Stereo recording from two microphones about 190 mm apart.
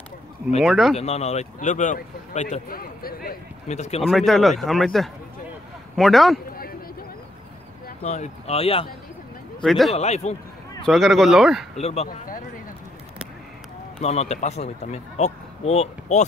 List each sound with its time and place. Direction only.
0.6 s speech: centre (ahead or behind)
0.9 s speech: 35° left (ahead or behind); by 3.3 s 50° left (ahead or behind)
3.6 s speech: 35° left (ahead or behind)
4.0 s speech: centre (ahead or behind)
6.5 s a sound: 50° left (ahead or behind)
8.0 s speech: 35° left (ahead or behind)
9.6 s speech: centre (ahead or behind)
9.9 s speech: 35° left (ahead or behind)
10.9 s speech: centre (ahead or behind)
11.8 s speech: 35° left (ahead or behind)
13.9 s speech: 35° left (ahead or behind)